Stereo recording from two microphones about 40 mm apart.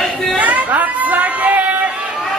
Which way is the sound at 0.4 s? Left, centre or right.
Right.